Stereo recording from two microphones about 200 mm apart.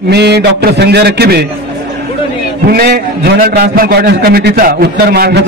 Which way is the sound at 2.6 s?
50° right (ahead or behind).